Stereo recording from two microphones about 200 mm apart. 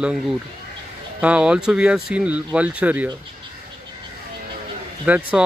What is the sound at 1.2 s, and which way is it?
Speech, 5° right (ahead or behind).